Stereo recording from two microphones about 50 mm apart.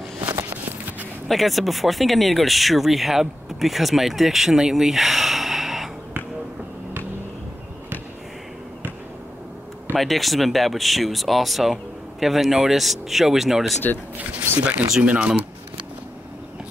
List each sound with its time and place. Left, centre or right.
1.3 s speech: centre
9.9 s speech: centre
14.6 s speech: right